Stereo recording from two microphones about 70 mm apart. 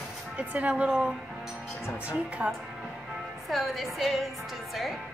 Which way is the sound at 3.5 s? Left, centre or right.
Centre.